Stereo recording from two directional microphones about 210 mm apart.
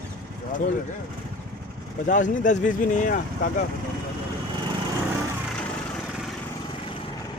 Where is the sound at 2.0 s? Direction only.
35° left (ahead or behind).